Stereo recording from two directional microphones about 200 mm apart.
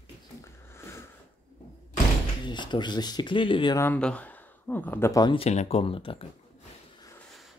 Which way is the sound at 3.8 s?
5° left (ahead or behind).